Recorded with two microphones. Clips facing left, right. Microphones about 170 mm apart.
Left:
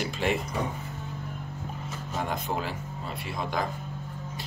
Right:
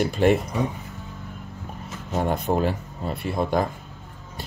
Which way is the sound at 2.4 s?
50° right (ahead or behind).